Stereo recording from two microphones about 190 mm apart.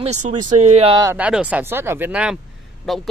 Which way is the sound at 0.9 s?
20° right (ahead or behind).